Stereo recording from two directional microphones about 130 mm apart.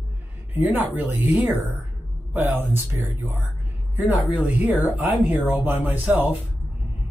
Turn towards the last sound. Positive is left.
turn(degrees=-10)  # may be behind; listen again after turning